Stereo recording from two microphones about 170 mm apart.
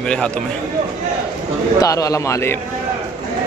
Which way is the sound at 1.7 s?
20° left (ahead or behind).